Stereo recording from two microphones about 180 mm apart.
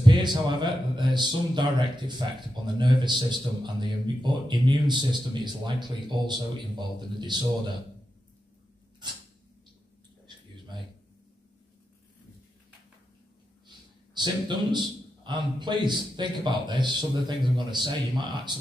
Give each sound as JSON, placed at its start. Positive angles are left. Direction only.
{"t": 0.0, "sound": "a man's voice", "side_deg": -25}
{"t": 13.7, "sound": "a man's voice", "side_deg": -25}